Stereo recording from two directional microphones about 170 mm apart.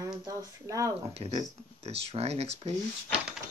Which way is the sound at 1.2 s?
35° right (ahead or behind).